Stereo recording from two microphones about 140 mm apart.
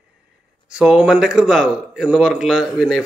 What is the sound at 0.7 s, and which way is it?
A man's voice, 5° right (ahead or behind).